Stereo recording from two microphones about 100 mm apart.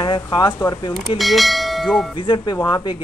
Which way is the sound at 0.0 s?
50° left (ahead or behind).